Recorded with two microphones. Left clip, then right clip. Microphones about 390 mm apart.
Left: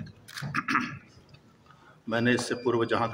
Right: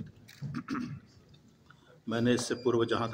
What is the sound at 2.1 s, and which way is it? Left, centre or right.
A man's voice, right.